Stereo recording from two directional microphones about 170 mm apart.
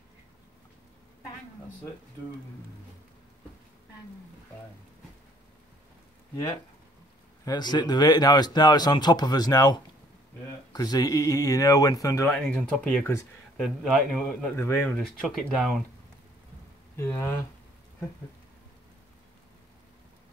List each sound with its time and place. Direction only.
6.3 s speech: 25° left (ahead or behind)
12.3 s speech: 5° left (ahead or behind)
13.6 s speech: centre (ahead or behind)
16.9 s speech: 15° left (ahead or behind)